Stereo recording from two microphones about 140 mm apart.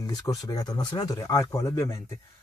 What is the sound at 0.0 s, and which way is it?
Speech, 25° left (ahead or behind).